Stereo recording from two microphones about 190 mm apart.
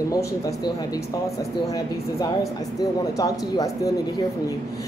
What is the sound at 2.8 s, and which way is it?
Speech, 20° left (ahead or behind).